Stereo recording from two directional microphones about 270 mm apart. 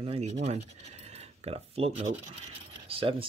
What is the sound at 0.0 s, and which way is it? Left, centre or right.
Speech, right.